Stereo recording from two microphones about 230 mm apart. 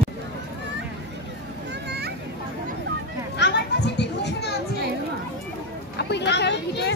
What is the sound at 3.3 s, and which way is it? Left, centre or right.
Children playing, left.